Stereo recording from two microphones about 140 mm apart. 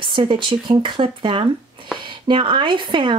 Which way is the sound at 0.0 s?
35° right (ahead or behind).